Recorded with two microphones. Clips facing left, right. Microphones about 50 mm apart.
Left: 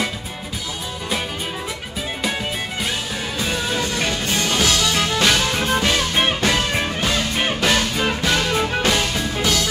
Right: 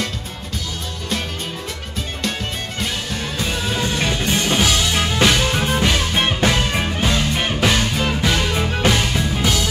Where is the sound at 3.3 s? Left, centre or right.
Centre.